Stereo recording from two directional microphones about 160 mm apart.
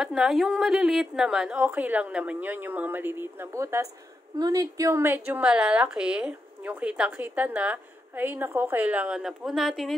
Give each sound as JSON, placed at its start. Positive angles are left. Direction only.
{"t": 0.0, "sound": "a woman's voice", "side_deg": 0}